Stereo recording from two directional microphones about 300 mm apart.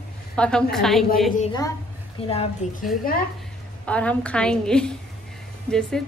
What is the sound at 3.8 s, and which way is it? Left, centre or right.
A woman's voice, centre.